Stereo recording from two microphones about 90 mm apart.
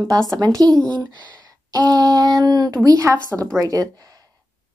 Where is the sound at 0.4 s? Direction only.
45° right (ahead or behind).